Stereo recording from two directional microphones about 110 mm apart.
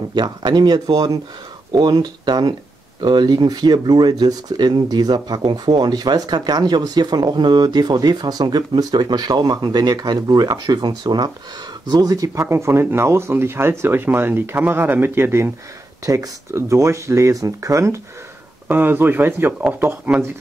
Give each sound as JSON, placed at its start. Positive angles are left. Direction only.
{"t": 0.1, "sound": "speech", "side_deg": -45}